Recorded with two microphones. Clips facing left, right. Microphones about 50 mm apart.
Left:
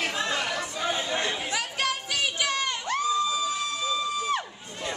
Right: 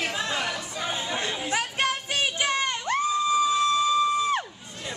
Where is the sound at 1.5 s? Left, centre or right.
Right.